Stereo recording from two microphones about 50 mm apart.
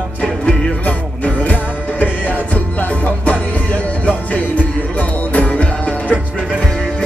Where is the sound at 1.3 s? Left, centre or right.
Left.